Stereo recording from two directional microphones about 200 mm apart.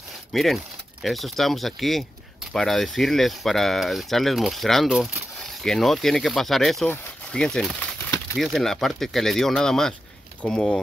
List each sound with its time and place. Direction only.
0.3 s speech: centre (ahead or behind)